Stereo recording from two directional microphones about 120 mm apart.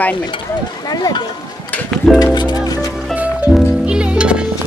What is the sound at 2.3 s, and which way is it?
Speech, 35° left (ahead or behind).